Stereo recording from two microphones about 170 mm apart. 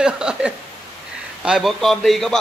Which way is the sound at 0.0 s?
5° right (ahead or behind).